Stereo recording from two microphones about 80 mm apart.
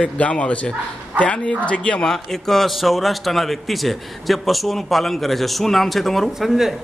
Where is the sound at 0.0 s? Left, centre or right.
Centre.